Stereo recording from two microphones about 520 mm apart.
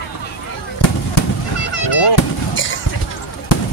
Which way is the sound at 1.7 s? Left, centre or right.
Left.